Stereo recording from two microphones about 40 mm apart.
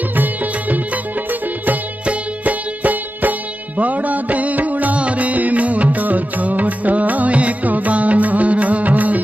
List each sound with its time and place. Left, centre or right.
0.1 s music: right
2.0 s music: right